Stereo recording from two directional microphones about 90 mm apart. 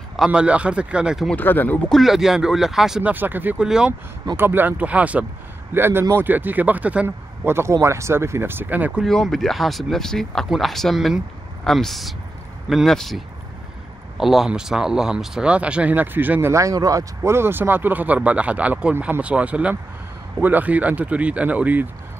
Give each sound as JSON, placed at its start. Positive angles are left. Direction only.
{"t": 0.3, "sound": "speech", "side_deg": -15}
{"t": 1.3, "sound": "speech", "side_deg": 20}
{"t": 1.9, "sound": "speech", "side_deg": 0}
{"t": 3.0, "sound": "speech", "side_deg": -20}
{"t": 3.5, "sound": "speech", "side_deg": -10}
{"t": 4.4, "sound": "speech", "side_deg": -25}
{"t": 5.7, "sound": "speech", "side_deg": -25}
{"t": 7.4, "sound": "speech", "side_deg": -30}
{"t": 9.0, "sound": "speech", "side_deg": 5}